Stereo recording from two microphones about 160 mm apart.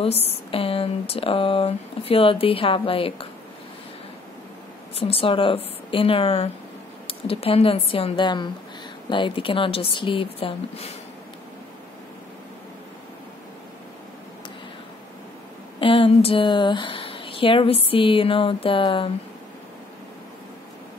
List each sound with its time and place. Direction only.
0.0 s speech: 40° left (ahead or behind)
4.9 s speech: 35° left (ahead or behind)
15.8 s speech: 35° left (ahead or behind)